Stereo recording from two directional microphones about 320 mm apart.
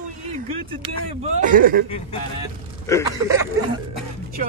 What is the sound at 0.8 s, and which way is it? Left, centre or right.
Speech, right.